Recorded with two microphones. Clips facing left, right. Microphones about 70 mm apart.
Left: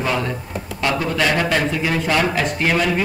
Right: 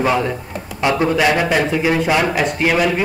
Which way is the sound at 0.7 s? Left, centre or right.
Right.